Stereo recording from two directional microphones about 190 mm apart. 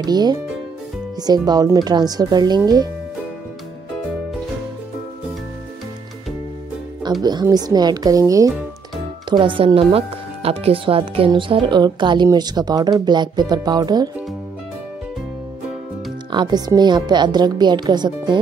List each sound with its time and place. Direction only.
0.0 s speech: 20° right (ahead or behind)
7.2 s speech: 20° right (ahead or behind)
16.3 s speech: 20° right (ahead or behind)